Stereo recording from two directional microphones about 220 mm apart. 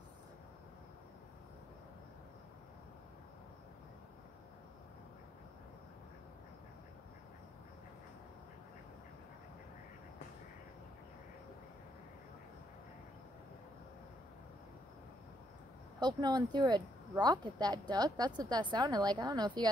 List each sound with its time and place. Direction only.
16.0 s speech: 20° right (ahead or behind)